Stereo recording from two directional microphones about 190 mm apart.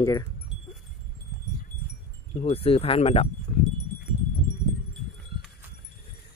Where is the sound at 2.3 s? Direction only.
30° left (ahead or behind).